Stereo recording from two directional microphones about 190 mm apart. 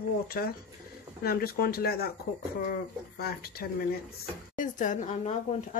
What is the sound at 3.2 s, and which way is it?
Speech, 50° left (ahead or behind).